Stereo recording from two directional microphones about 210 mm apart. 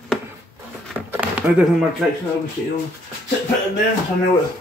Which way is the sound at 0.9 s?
5° right (ahead or behind).